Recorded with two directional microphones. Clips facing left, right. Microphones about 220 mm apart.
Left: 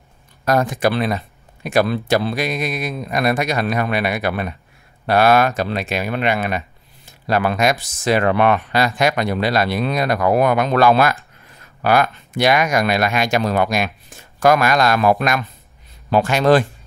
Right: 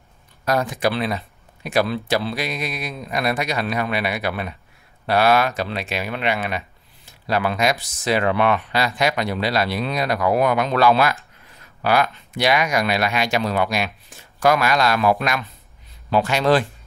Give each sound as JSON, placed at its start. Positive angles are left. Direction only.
{"t": 0.5, "sound": "speech", "side_deg": 50}